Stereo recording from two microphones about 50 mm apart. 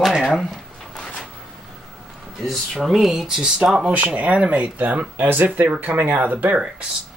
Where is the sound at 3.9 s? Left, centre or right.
Right.